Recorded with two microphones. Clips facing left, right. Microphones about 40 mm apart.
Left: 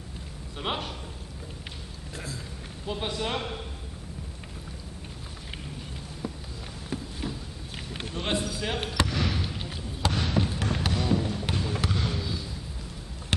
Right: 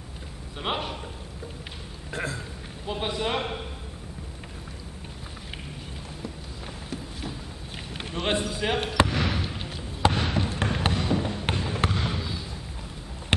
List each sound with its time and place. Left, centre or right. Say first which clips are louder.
0.6 s a man's voice: right 2 dB; centre
2.1 s a sound: right 7 dB; right
2.9 s a man's voice: right 2 dB; centre
6.9 s a sound: left 3 dB; centre
8.1 s a man's voice: right 3 dB; right
8.9 s basketball bounce: right 4 dB; right
10.0 s basketball bounce: right 3 dB; centre
10.9 s music: even; centre
11.5 s basketball bounce: right 2 dB; centre